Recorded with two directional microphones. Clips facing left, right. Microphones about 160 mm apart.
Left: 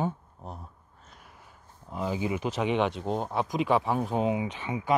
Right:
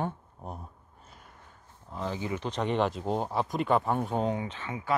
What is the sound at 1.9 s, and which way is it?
Speech, 10° left (ahead or behind).